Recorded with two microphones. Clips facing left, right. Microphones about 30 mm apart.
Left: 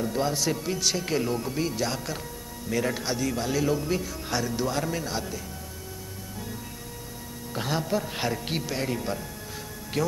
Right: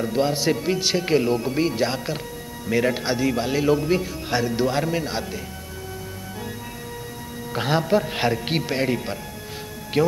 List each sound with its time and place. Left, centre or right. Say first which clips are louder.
0.0 s a man's voice: right 5 dB; right
7.5 s a man's voice: right 7 dB; right